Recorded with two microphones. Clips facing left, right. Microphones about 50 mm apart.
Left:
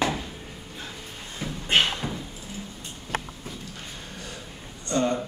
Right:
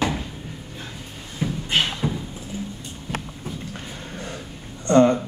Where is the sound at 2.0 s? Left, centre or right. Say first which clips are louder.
Right 6 dB; centre.